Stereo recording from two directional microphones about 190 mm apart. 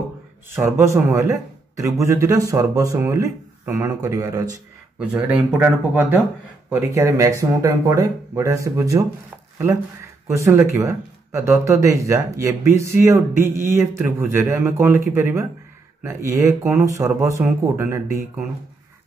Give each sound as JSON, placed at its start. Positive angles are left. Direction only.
{"t": 0.6, "sound": "speech", "side_deg": -15}
{"t": 4.9, "sound": "speech", "side_deg": -5}
{"t": 10.2, "sound": "speech", "side_deg": -15}